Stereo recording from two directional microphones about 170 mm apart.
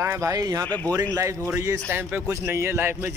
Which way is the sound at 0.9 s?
20° right (ahead or behind).